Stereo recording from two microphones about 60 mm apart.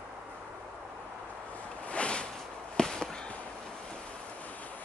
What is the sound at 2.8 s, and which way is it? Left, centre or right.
Chop, centre.